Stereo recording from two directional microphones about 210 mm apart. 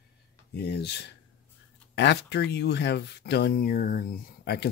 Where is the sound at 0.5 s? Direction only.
50° left (ahead or behind).